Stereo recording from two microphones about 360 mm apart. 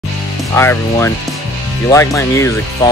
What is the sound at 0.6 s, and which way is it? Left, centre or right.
Speech, centre.